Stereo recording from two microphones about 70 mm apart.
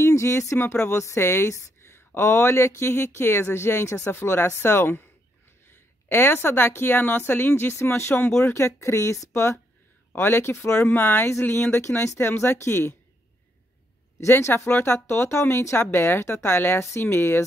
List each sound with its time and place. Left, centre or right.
0.0 s a woman's voice: left
14.2 s speech: left